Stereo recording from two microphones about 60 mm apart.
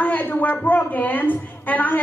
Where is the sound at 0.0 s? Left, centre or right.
Left.